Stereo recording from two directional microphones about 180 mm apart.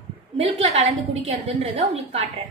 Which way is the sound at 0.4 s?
35° right (ahead or behind).